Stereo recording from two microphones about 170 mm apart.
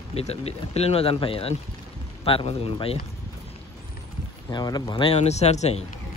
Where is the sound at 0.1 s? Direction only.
35° left (ahead or behind).